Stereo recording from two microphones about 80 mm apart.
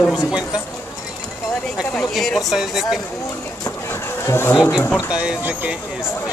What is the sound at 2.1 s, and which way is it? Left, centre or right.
Speech, centre.